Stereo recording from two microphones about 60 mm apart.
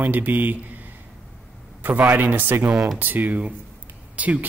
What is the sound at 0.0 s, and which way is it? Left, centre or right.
Speech, right.